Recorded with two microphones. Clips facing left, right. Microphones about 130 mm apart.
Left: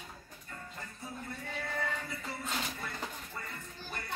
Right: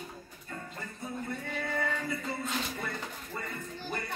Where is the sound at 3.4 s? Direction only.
70° right (ahead or behind).